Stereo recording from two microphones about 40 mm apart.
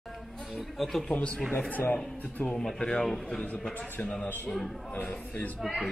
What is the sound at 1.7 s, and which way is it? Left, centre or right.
Speech, left.